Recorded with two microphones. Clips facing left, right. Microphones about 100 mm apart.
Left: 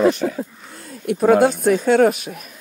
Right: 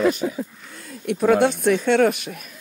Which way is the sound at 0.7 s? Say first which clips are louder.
Left 4 dB; 35° left (ahead or behind).